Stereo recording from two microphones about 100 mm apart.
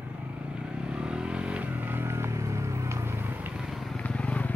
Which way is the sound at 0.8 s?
10° right (ahead or behind).